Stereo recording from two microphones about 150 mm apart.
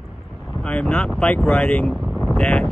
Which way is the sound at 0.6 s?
10° left (ahead or behind).